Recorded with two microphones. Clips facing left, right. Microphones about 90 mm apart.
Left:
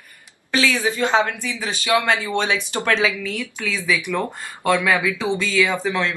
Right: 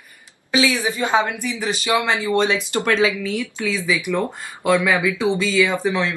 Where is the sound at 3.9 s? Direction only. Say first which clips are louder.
Right 1 dB; 15° right (ahead or behind).